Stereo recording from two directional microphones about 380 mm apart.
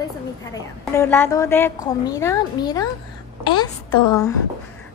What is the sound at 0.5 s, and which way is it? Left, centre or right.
A child's voice, centre.